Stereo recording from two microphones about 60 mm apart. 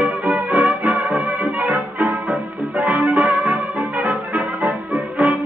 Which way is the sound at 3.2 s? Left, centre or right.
Centre.